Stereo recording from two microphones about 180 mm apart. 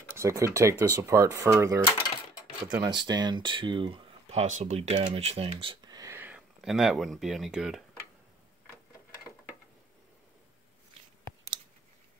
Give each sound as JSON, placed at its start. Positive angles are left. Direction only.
{"t": 0.1, "sound": "speech", "side_deg": -15}